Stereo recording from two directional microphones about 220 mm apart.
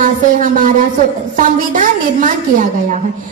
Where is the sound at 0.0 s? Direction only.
35° right (ahead or behind).